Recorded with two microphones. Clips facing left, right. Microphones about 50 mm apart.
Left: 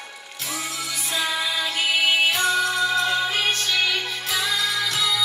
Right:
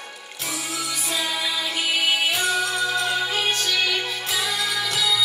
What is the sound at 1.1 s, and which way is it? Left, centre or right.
Music, left.